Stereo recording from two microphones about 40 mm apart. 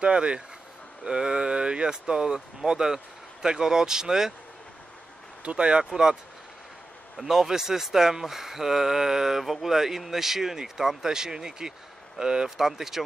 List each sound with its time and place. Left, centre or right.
0.0 s speech: right
5.4 s speech: right
7.2 s speech: centre